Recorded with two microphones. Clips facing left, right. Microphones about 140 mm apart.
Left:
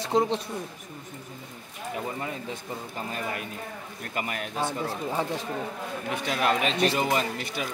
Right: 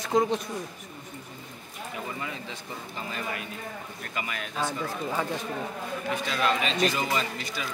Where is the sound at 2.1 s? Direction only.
45° left (ahead or behind).